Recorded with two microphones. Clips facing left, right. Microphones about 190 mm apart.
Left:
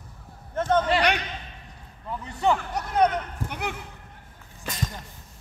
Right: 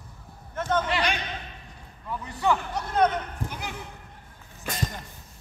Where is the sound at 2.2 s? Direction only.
25° left (ahead or behind).